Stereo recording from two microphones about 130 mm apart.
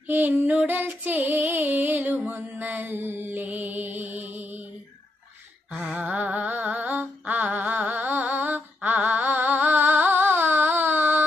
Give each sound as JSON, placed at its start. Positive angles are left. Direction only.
{"t": 0.0, "sound": "female singing", "side_deg": -15}
{"t": 2.1, "sound": "mantra", "side_deg": -10}
{"t": 5.7, "sound": "humming", "side_deg": -10}